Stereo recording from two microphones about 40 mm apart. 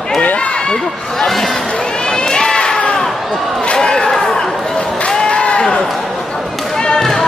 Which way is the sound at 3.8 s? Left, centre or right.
Centre.